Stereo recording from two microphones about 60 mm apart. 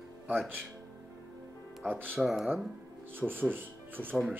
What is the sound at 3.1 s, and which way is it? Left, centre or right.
Speech, right.